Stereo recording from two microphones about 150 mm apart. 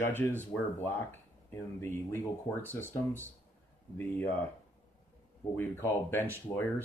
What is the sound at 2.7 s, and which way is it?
Speech, 15° left (ahead or behind).